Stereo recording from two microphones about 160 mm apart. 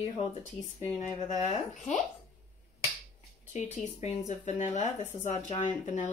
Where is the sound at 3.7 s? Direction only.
45° left (ahead or behind).